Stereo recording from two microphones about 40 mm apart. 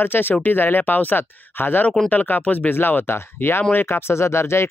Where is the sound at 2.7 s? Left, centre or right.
Left.